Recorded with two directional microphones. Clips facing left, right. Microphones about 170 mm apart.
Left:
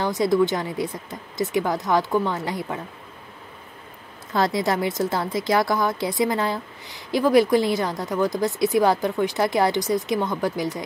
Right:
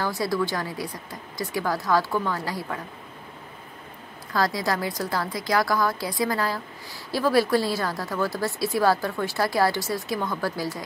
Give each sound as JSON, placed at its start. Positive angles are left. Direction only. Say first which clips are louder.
{"t": 0.0, "sound": "a woman's voice", "louder": "left 6 dB", "side_deg": 20}
{"t": 4.3, "sound": "a woman's voice", "louder": "left 3 dB", "side_deg": 25}